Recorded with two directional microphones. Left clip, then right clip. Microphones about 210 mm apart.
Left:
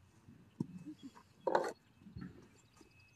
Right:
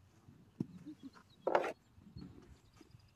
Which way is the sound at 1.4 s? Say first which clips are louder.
Right 1 dB; 35° right (ahead or behind).